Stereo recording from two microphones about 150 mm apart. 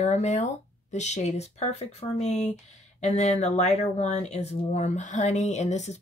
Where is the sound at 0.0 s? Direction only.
50° left (ahead or behind).